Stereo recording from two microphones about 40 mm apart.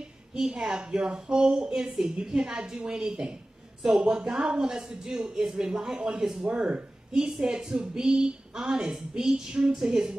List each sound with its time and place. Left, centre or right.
0.3 s a woman's voice: centre
5.9 s speech: right
7.5 s a woman's voice: centre
9.3 s speech: right
9.8 s a woman's voice: centre